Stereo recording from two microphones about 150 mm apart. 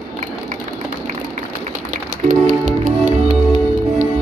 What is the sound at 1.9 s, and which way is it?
Music, 60° right (ahead or behind).